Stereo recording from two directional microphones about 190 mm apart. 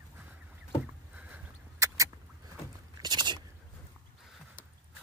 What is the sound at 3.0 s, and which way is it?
Chewing, 25° right (ahead or behind).